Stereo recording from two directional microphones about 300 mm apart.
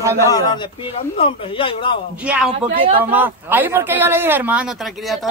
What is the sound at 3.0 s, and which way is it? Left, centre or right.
Speech, centre.